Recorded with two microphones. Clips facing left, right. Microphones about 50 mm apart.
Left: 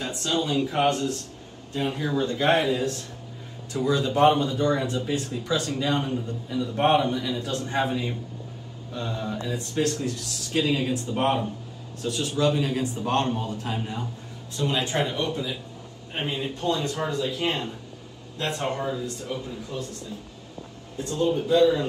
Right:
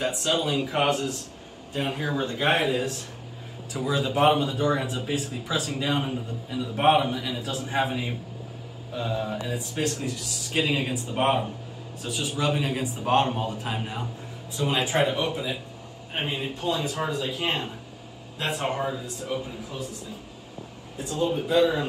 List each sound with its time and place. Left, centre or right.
0.0 s speech: centre
10.5 s speech: centre
21.0 s speech: centre